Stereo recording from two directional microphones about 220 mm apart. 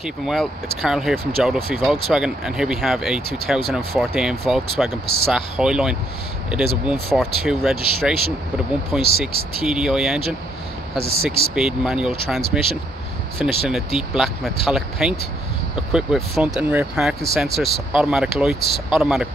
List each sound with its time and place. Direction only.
0.0 s speech: centre (ahead or behind)
11.0 s speech: 45° left (ahead or behind)
11.2 s speech: centre (ahead or behind)
13.4 s speech: centre (ahead or behind)